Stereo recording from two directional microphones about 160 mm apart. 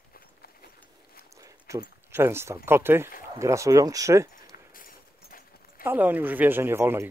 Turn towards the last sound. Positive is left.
turn(degrees=-15)  # may be behind; listen again after turning